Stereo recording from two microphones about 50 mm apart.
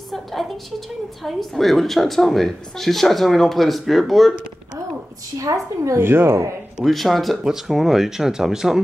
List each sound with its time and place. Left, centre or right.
0.1 s a woman's voice: centre
5.4 s a woman's voice: right
5.9 s speech: right
6.8 s a woman's voice: centre